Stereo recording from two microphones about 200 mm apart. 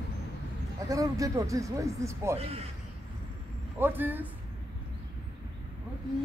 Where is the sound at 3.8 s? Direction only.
10° right (ahead or behind).